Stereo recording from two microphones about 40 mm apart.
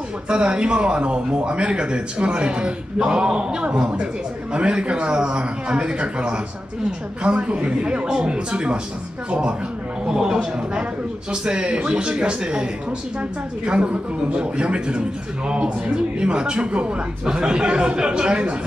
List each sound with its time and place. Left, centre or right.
0.3 s a man's voice: right
10.0 s a man's voice: centre
13.7 s a man's voice: right